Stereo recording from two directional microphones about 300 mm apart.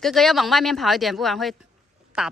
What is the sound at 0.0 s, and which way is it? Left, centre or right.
A woman's voice, centre.